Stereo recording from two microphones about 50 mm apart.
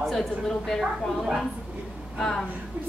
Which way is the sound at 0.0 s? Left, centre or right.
Centre.